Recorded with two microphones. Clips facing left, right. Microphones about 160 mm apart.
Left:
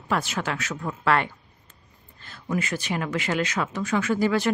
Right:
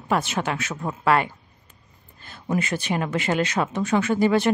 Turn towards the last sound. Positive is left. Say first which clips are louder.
# right 3 dB
turn(degrees=-25)  # may be behind; listen again after turning